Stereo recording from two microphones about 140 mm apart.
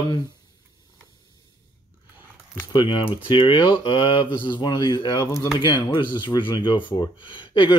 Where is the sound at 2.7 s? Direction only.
35° left (ahead or behind).